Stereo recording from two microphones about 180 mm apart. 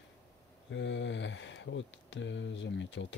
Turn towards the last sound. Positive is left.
turn(degrees=90)